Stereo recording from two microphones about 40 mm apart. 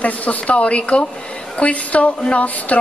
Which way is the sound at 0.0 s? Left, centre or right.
Left.